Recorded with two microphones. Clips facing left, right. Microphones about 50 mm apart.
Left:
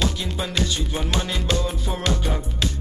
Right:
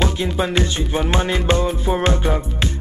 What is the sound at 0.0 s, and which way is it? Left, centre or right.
Music, right.